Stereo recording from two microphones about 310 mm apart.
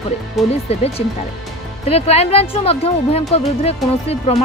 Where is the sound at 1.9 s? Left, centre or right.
Centre.